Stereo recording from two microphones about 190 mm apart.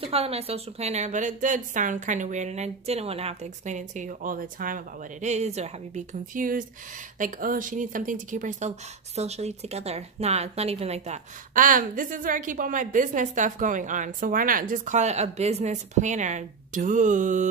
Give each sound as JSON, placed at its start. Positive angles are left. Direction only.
{"t": 0.0, "sound": "speech", "side_deg": -30}